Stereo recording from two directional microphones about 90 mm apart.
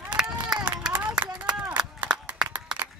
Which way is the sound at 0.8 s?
15° right (ahead or behind).